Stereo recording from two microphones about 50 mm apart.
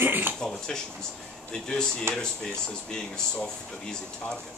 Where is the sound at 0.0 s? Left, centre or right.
Right.